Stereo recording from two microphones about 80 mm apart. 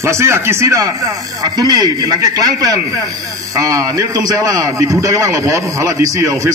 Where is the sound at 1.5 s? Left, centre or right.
Right.